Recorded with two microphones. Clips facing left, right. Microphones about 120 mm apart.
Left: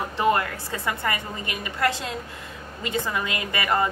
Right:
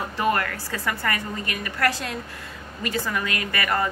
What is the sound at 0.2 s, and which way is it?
Speech, 20° left (ahead or behind).